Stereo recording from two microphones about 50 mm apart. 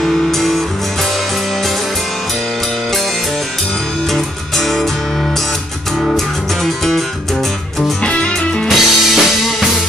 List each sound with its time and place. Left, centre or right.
0.0 s music: centre
4.1 s music: centre
8.0 s music: left
8.6 s music: centre